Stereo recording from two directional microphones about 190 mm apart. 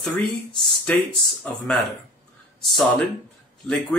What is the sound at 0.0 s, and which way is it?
Speech, 5° left (ahead or behind).